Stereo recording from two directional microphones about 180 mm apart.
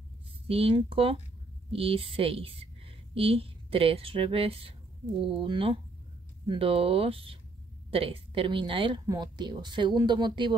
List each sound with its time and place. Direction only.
0.5 s a woman's voice: 30° right (ahead or behind)